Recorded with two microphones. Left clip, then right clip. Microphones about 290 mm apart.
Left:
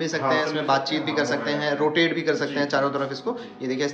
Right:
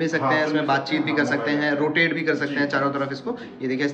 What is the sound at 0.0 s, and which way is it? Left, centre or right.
A man's voice, centre.